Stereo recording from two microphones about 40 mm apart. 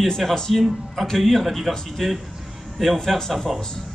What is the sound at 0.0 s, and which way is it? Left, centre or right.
A man's voice, centre.